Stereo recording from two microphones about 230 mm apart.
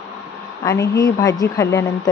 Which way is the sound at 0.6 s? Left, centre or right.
Centre.